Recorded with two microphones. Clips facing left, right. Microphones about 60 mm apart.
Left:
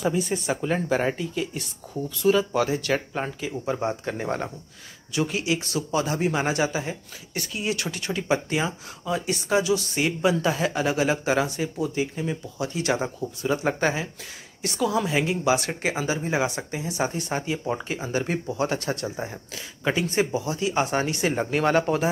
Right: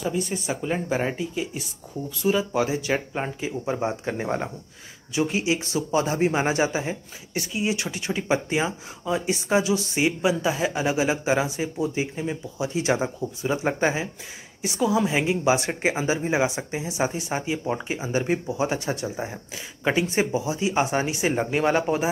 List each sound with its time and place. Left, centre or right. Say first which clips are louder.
0.0 s speech: left 2 dB; centre; by 10.0 s right
10.0 s speech: even; centre